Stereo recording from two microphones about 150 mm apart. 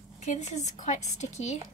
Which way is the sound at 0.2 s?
50° left (ahead or behind).